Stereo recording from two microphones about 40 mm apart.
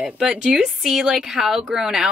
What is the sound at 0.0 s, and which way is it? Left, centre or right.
A woman's voice, right.